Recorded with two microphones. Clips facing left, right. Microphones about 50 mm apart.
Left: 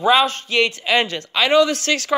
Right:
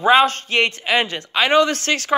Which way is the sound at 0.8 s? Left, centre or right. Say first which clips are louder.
Left 1 dB; centre.